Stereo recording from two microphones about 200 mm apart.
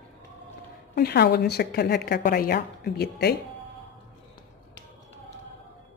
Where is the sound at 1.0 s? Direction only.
55° left (ahead or behind).